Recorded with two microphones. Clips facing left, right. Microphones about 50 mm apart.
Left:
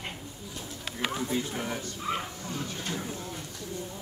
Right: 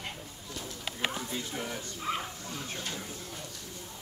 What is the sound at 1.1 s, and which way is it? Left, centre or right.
Speech, centre.